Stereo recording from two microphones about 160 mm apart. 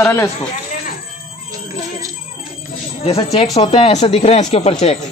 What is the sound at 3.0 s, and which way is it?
Speech, 40° left (ahead or behind).